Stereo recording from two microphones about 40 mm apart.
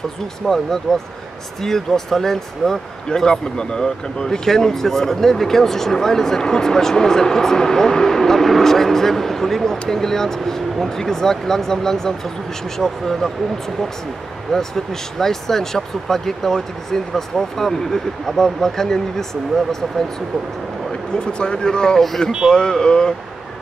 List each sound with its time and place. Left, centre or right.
0.4 s speech: centre
14.5 s speech: centre
21.2 s speech: left